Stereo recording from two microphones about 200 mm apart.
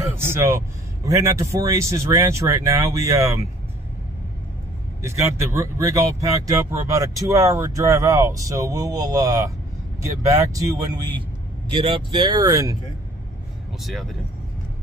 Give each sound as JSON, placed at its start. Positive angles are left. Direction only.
{"t": 0.0, "sound": "speech", "side_deg": -10}
{"t": 5.0, "sound": "speech", "side_deg": -15}